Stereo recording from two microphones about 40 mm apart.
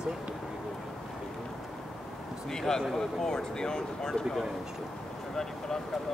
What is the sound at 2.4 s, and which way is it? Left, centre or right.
Speech, centre.